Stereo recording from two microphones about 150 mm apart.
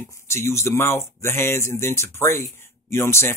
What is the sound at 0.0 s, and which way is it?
Speech, 20° left (ahead or behind).